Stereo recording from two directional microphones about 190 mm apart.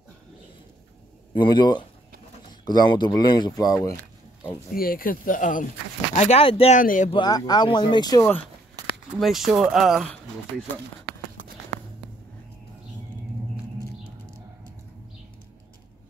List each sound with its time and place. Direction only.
1.3 s speech: 25° left (ahead or behind)
4.7 s speech: 50° left (ahead or behind)
6.1 s speech: 35° left (ahead or behind)
6.8 s speech: 45° left (ahead or behind)
7.1 s speech: 20° left (ahead or behind)
9.2 s speech: centre (ahead or behind)